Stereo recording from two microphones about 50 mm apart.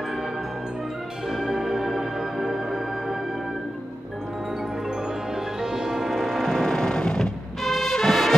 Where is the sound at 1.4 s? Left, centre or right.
Centre.